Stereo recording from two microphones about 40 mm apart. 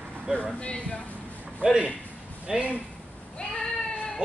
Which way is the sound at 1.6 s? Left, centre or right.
Right.